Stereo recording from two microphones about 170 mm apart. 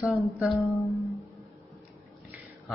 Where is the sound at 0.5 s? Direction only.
20° left (ahead or behind).